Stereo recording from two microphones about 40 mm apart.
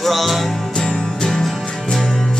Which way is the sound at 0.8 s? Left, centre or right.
Centre.